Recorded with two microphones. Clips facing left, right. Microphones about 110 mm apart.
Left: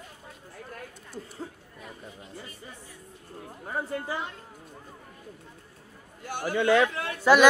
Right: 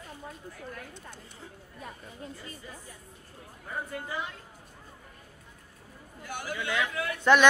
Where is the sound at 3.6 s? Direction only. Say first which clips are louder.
Left 5 dB; 35° left (ahead or behind).